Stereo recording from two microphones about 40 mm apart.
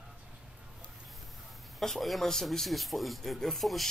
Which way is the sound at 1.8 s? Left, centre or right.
Centre.